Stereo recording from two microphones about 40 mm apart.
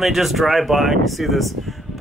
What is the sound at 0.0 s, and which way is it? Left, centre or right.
Speech, centre.